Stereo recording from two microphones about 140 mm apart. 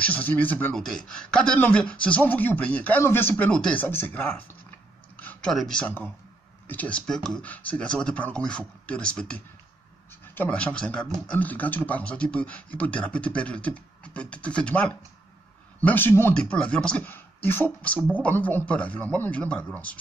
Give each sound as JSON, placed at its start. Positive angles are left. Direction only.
{"t": 0.0, "sound": "speech", "side_deg": 10}